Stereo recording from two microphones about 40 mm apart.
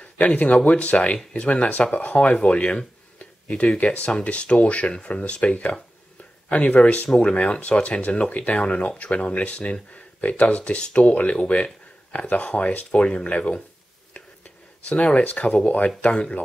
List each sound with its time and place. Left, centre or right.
0.0 s speech: left
3.2 s a sound: left
3.7 s speech: left
14.9 s speech: left